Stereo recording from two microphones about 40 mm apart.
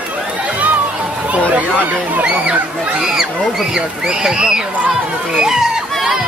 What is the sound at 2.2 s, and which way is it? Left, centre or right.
Speech, right.